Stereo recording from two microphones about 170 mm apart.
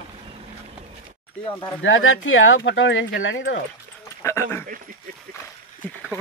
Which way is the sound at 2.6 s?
90° left.